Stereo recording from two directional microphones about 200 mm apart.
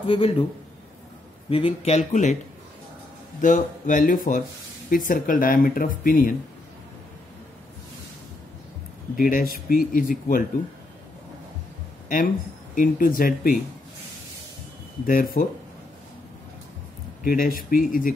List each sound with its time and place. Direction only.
0.0 s a man's voice: 30° left (ahead or behind)
1.5 s speech: 30° left (ahead or behind)
3.3 s speech: 40° left (ahead or behind)
9.1 s speech: 45° left (ahead or behind)
12.7 s speech: 45° left (ahead or behind)
15.0 s speech: 45° left (ahead or behind)
17.2 s speech: 45° left (ahead or behind)